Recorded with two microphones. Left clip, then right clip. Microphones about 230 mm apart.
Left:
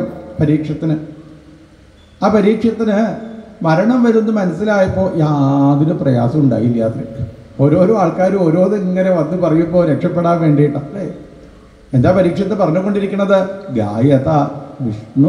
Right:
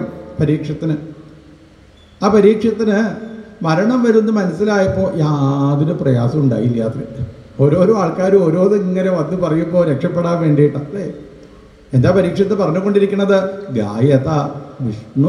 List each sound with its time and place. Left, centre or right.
0.4 s a man's voice: right
2.1 s a man's voice: right